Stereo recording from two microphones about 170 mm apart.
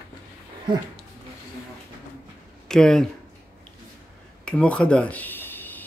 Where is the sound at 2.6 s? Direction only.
5° left (ahead or behind).